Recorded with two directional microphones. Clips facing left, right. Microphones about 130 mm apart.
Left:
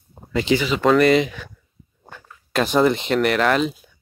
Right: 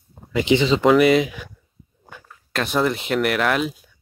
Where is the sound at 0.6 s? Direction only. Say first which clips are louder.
Right 4 dB; 25° right (ahead or behind).